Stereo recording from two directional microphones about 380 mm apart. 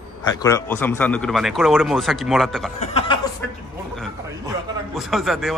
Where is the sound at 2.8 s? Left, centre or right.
Centre.